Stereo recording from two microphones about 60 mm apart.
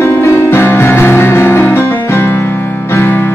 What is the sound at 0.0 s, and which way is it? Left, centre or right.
Music, left.